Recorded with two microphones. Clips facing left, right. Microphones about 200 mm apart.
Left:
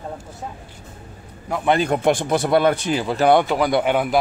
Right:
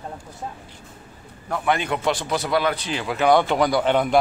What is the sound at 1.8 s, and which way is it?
A man's voice, 50° left (ahead or behind).